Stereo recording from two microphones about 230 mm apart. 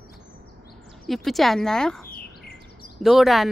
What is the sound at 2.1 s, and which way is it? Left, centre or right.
Chirp, left.